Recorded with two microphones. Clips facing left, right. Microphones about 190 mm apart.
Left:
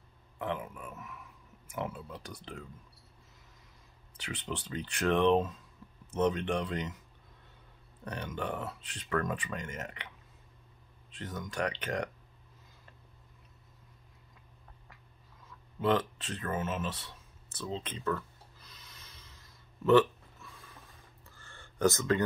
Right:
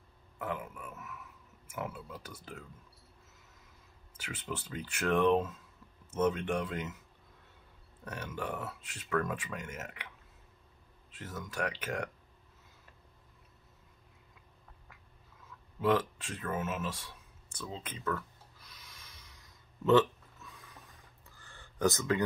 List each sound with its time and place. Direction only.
0.8 s speech: 5° right (ahead or behind)
4.2 s speech: 5° right (ahead or behind)
8.0 s speech: 5° right (ahead or behind)
11.1 s speech: 5° right (ahead or behind)
15.8 s speech: 10° right (ahead or behind)
18.7 s a sound: 10° right (ahead or behind)